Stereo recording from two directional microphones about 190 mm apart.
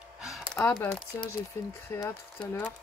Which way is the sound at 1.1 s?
15° left (ahead or behind).